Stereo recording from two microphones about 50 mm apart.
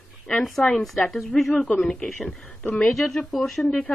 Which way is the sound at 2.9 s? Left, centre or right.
Centre.